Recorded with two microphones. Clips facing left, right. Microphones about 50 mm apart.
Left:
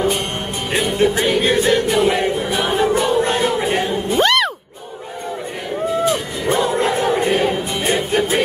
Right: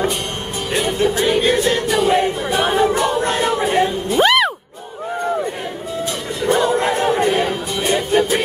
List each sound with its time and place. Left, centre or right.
0.9 s music: left
2.8 s a capella: centre
3.3 s a sound: centre
4.2 s a sound: centre
6.5 s music: centre
7.0 s crowd: left
7.4 s music: centre